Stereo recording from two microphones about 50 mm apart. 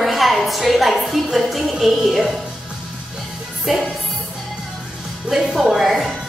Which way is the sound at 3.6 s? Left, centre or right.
Centre.